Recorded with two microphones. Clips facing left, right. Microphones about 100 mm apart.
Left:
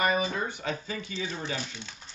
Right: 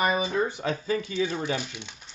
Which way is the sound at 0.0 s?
20° right (ahead or behind).